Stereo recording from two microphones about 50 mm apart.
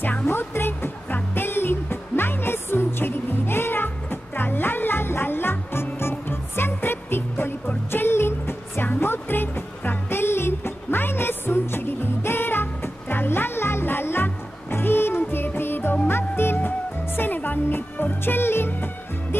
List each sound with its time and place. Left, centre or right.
0.3 s music: left